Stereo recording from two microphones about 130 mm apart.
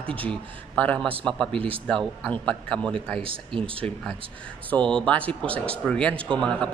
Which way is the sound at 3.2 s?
45° right (ahead or behind).